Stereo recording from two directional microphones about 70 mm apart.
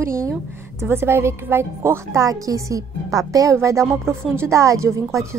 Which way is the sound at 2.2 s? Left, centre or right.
Right.